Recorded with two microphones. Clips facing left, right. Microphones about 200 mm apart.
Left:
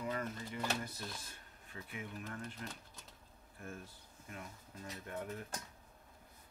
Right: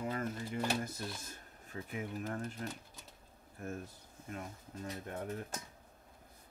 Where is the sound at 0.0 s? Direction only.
45° right (ahead or behind).